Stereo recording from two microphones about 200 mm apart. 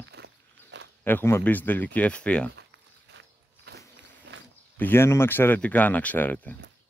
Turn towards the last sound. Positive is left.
turn(degrees=10)  # may be behind; listen again after turning